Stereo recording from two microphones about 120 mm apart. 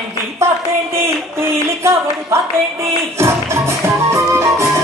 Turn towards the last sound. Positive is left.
turn(degrees=-25)  # may be behind; listen again after turning